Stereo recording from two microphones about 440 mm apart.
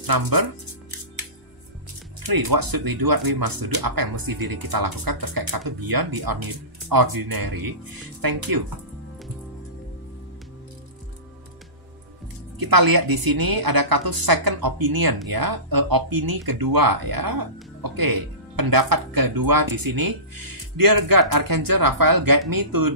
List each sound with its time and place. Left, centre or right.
0.0 s speech: right
2.2 s a woman's voice: right
12.5 s a woman's voice: right